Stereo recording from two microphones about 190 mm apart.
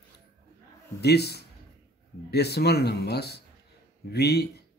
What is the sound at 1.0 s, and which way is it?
Speech, 60° left (ahead or behind).